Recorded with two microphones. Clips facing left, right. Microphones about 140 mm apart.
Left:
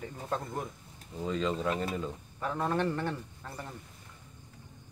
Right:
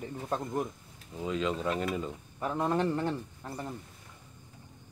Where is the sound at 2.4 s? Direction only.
20° right (ahead or behind).